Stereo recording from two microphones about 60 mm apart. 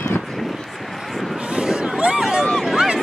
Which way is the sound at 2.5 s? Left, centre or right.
Centre.